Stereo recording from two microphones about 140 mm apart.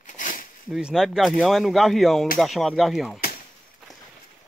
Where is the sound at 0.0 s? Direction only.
70° left (ahead or behind).